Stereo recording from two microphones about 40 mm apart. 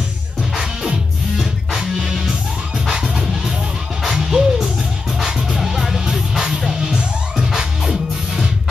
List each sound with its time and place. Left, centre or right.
1.7 s music: centre
6.7 s music: centre